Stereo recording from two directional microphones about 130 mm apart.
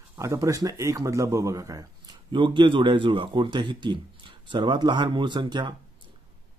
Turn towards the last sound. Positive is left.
turn(degrees=-35)  # may be behind; listen again after turning